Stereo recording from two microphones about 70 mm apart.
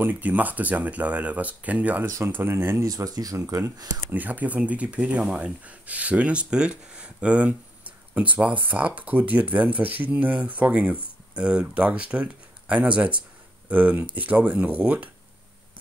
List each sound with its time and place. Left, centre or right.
0.0 s speech: right
2.0 s speech: right
2.9 s speech: right
4.1 s speech: right